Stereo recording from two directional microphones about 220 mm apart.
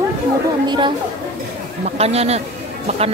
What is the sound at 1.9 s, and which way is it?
Speech, 30° right (ahead or behind).